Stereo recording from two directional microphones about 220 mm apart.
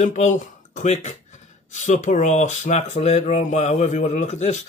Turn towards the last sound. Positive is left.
turn(degrees=30)  # may be behind; listen again after turning